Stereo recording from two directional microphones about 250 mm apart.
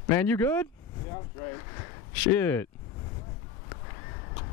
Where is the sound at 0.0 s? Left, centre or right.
Centre.